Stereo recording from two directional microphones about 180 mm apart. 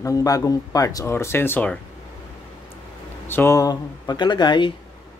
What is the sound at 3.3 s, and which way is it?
A man's voice, 15° left (ahead or behind).